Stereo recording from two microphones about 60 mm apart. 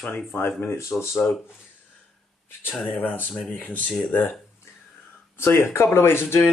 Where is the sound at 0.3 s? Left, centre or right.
Left.